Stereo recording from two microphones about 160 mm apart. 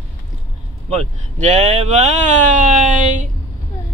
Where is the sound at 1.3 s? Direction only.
45° right (ahead or behind).